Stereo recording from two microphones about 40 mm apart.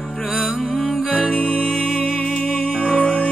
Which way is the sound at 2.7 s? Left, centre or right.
Left.